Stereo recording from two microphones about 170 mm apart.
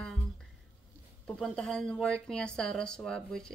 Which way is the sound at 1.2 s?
5° left (ahead or behind).